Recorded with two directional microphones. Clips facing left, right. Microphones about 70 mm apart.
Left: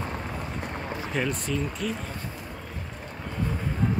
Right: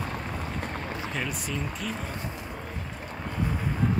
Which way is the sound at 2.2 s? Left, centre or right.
Centre.